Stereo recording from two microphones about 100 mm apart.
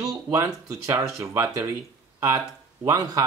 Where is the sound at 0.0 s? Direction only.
35° right (ahead or behind).